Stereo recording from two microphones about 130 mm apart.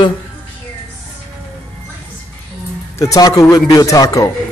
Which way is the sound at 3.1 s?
30° left (ahead or behind).